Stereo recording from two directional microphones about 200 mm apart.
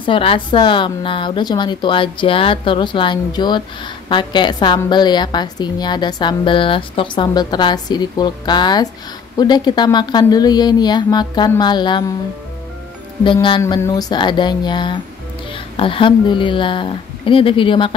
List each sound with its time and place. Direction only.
0.0 s a woman's voice: 25° left (ahead or behind)
13.2 s a woman's voice: 25° left (ahead or behind)